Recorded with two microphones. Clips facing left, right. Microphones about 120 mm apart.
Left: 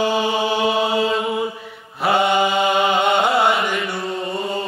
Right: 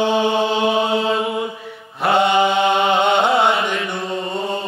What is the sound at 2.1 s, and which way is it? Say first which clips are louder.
Mantra: right 2 dB; 25° right (ahead or behind).